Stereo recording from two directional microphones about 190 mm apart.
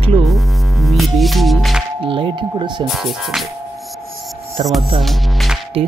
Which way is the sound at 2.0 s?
25° right (ahead or behind).